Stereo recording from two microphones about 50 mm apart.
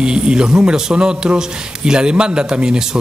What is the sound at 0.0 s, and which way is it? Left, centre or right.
Speech, centre.